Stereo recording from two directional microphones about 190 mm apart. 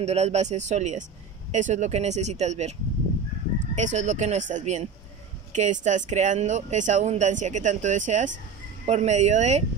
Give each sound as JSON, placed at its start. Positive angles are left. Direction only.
{"t": 0.0, "sound": "speech", "side_deg": -35}
{"t": 3.7, "sound": "speech", "side_deg": -40}